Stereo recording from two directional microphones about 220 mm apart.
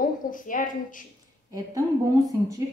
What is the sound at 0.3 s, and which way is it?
Speech, 35° left (ahead or behind).